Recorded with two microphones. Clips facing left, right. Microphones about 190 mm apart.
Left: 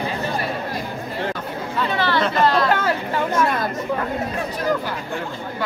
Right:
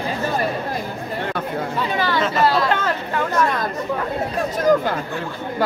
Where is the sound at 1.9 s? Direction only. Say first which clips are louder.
Even; 10° right (ahead or behind).